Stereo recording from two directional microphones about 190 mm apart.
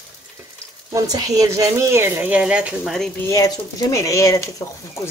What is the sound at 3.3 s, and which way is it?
Speech, 15° left (ahead or behind).